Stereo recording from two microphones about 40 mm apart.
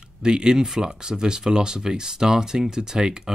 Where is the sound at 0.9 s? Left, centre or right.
Centre.